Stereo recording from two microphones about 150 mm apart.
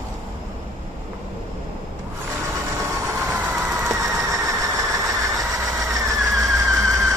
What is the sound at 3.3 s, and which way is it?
Vehicle, 20° right (ahead or behind).